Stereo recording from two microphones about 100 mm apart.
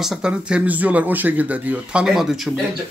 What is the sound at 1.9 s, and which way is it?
Speech, 5° right (ahead or behind).